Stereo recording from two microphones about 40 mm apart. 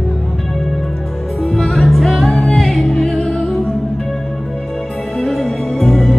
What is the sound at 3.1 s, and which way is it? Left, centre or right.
Music, left.